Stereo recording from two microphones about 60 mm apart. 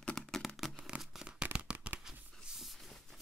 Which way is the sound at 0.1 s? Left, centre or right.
Centre.